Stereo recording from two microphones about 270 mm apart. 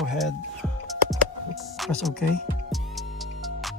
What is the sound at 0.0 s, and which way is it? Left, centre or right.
Music, centre.